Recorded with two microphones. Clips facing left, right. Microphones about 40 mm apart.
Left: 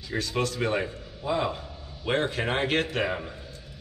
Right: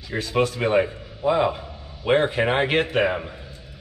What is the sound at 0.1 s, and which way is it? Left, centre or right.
A man's voice, right.